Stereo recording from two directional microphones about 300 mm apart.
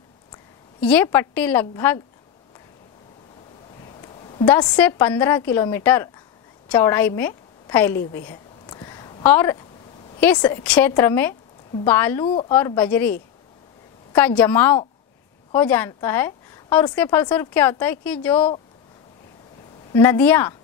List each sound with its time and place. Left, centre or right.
0.7 s a woman's voice: centre
3.8 s a sound: centre
4.5 s a woman's voice: centre
8.3 s a sound: centre
10.2 s a woman's voice: centre
12.3 s a woman's voice: centre
12.5 s a woman's voice: centre
14.1 s a woman's voice: centre
19.9 s a woman's voice: centre